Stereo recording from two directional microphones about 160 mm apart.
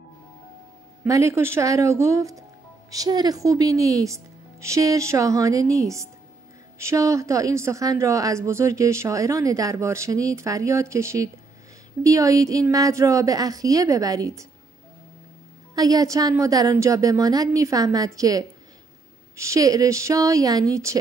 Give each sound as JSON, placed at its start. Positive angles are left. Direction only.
{"t": 1.0, "sound": "speech", "side_deg": -20}
{"t": 15.7, "sound": "speech", "side_deg": -25}